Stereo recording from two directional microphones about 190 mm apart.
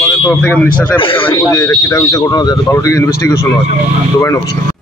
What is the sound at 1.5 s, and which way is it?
Speech, 15° left (ahead or behind).